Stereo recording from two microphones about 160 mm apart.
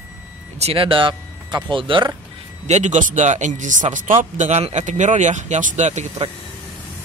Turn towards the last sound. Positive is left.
turn(degrees=-45)  # may be behind; listen again after turning